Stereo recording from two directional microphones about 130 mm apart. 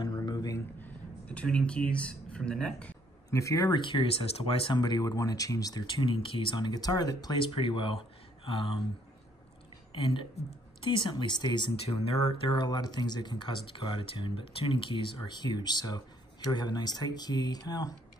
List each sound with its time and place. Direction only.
0.0 s a sound: 30° left (ahead or behind)
0.7 s a sound: 10° left (ahead or behind)
3.3 s speech: 25° left (ahead or behind); by 4.7 s 50° left (ahead or behind)
4.7 s speech: 30° left (ahead or behind)
10.3 s speech: 40° left (ahead or behind)
11.8 s speech: 50° left (ahead or behind); by 17.9 s 30° left (ahead or behind)